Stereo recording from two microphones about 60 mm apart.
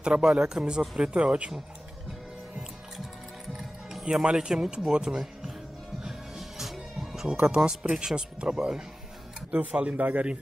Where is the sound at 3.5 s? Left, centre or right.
Centre.